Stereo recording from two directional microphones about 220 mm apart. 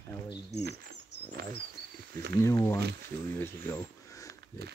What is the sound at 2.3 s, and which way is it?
Speech, 15° left (ahead or behind).